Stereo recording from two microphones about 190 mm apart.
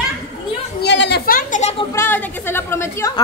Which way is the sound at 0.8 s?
65° left (ahead or behind).